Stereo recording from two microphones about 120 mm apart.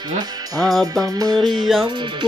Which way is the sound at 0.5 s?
Centre (ahead or behind).